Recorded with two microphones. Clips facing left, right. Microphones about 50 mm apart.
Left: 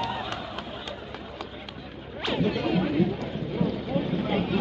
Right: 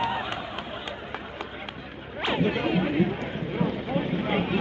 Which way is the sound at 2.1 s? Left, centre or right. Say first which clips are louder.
Right 1 dB; right.